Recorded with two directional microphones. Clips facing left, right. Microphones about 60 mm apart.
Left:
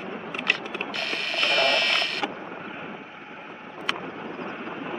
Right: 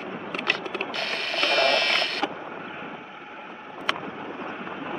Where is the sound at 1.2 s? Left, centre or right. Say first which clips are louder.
Right 1 dB; left.